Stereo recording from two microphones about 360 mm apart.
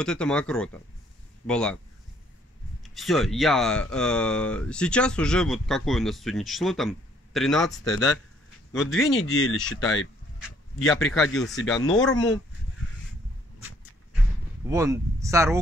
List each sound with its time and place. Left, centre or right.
0.0 s speech: centre
2.8 s speech: centre
9.1 s speech: left
10.9 s speech: centre
14.7 s speech: centre